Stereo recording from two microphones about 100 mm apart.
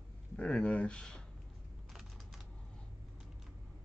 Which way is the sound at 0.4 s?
10° left (ahead or behind).